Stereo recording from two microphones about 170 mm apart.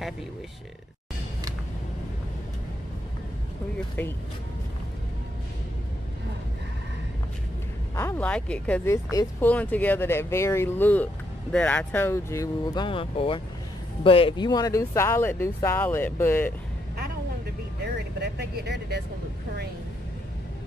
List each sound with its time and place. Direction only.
7.9 s speech: 15° left (ahead or behind)
12.8 s speech: 30° left (ahead or behind); by 16.5 s 10° left (ahead or behind)
17.9 s vehicle: 75° right (ahead or behind)